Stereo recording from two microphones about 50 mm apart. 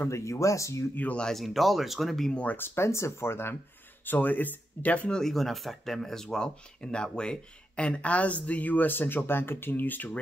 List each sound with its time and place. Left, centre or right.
0.1 s speech: left
1.3 s speech: centre
2.5 s speech: left
4.0 s speech: left
5.1 s speech: centre; by 10.1 s left